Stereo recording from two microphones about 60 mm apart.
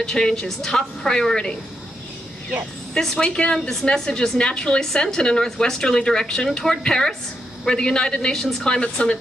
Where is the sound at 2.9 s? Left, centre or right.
Centre.